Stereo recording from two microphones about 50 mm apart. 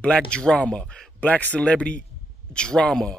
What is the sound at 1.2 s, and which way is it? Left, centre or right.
A man's voice, left.